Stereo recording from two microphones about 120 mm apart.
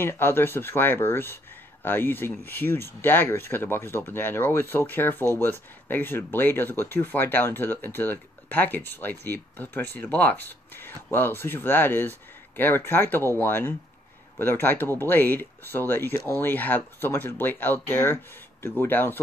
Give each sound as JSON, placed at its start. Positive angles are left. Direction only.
{"t": 0.0, "sound": "speech", "side_deg": 20}